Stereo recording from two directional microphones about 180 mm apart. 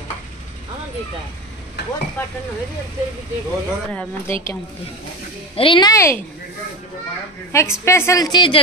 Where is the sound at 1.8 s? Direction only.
65° left (ahead or behind).